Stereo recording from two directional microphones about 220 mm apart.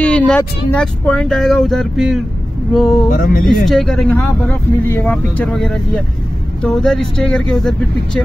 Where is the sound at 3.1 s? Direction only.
40° left (ahead or behind).